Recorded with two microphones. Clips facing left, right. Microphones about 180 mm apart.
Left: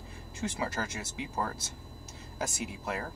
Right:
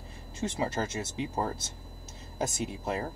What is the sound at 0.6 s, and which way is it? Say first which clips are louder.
Speech: right 6 dB; 25° right (ahead or behind).